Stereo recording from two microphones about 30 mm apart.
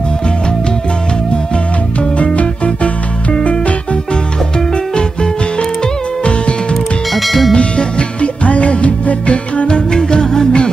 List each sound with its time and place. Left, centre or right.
2.3 s music: left
4.9 s music: left
7.2 s bell: centre
7.5 s music: left
9.9 s music: left